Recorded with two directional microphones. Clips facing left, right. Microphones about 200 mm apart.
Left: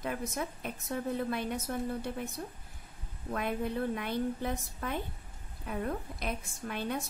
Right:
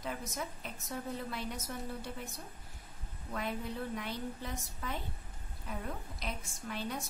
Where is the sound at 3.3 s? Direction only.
60° left (ahead or behind).